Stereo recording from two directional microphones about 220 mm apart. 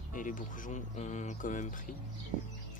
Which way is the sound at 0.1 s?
35° left (ahead or behind).